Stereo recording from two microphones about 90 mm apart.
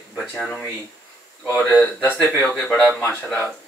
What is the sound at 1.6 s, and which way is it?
A man's voice, 25° left (ahead or behind).